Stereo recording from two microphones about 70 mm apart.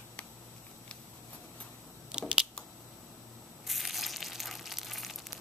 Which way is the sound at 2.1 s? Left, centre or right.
Centre.